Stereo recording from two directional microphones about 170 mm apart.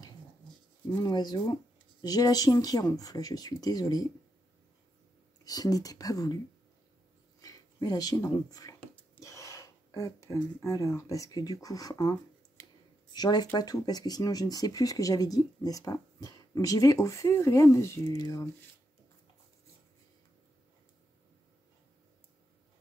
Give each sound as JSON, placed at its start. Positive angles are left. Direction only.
{"t": 0.9, "sound": "speech", "side_deg": 20}
{"t": 5.4, "sound": "speech", "side_deg": 20}
{"t": 7.4, "sound": "speech", "side_deg": 20}